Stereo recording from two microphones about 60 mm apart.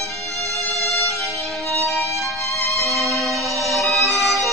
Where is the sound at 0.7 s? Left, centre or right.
Centre.